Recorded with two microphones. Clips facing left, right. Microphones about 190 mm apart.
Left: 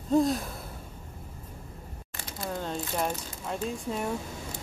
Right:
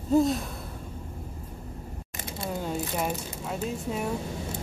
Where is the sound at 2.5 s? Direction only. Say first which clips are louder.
Right 2 dB; 10° right (ahead or behind).